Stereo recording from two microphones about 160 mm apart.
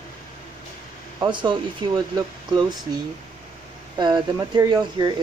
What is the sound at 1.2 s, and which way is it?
Speech, 30° right (ahead or behind).